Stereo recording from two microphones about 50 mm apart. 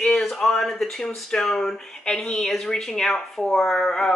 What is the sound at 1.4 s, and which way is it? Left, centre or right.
Speech, centre.